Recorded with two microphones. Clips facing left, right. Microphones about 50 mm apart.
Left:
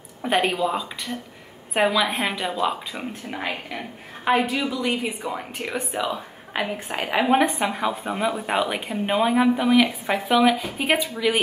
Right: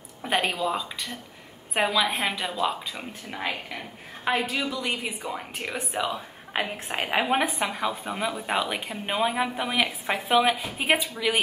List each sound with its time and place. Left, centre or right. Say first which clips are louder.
0.5 s a woman's voice: left 3 dB; centre
6.5 s a woman's voice: left 2 dB; centre
7.2 s a woman's voice: left 5 dB; centre